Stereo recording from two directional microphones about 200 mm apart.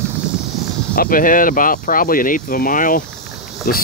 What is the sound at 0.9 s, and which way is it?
Speech, 45° left (ahead or behind).